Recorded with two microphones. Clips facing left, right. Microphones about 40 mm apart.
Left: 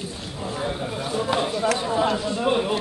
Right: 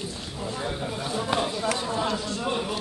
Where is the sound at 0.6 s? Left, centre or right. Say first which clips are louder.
Left 4 dB; centre.